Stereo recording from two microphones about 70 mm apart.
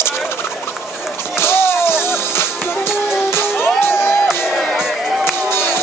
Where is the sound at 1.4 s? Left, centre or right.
Left.